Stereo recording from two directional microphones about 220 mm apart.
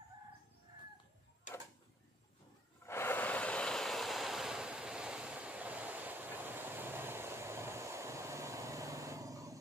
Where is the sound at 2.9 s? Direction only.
10° left (ahead or behind).